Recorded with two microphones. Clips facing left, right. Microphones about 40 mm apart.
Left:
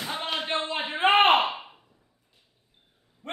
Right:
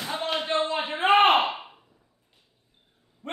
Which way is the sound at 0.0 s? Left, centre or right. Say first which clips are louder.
Right 2 dB; centre.